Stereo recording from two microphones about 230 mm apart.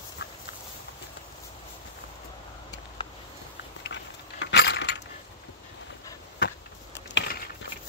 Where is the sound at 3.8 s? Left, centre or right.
Left.